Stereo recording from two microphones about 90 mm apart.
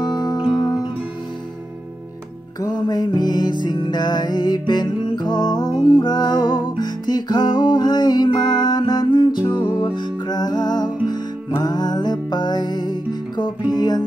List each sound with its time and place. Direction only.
0.0 s music: 50° left (ahead or behind)
2.6 s music: 50° left (ahead or behind)